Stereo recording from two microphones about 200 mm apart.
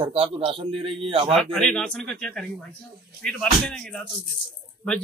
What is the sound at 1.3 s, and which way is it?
A man's voice, 5° left (ahead or behind).